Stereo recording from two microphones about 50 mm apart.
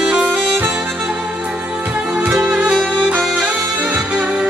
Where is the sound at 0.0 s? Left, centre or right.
Centre.